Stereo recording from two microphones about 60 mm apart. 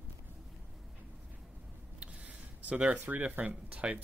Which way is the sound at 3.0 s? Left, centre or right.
Right.